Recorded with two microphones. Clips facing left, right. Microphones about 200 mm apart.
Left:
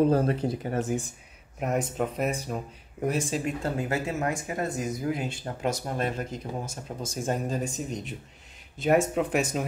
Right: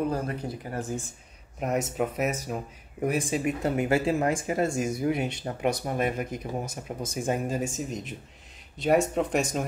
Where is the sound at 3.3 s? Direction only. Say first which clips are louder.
Right 3 dB; 20° right (ahead or behind).